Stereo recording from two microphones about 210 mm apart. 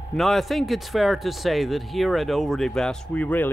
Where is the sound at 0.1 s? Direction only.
Centre (ahead or behind).